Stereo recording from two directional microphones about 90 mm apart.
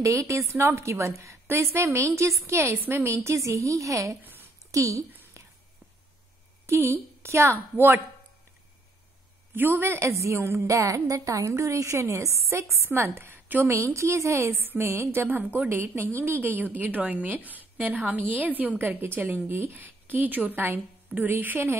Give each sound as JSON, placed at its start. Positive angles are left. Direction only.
{"t": 0.0, "sound": "a woman's voice", "side_deg": -35}
{"t": 5.4, "sound": "whispering", "side_deg": -35}
{"t": 6.6, "sound": "a woman's voice", "side_deg": -25}
{"t": 9.6, "sound": "a woman's voice", "side_deg": -25}